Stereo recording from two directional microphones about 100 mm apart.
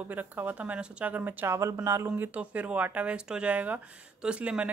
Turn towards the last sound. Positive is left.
turn(degrees=-15)  # may be behind; listen again after turning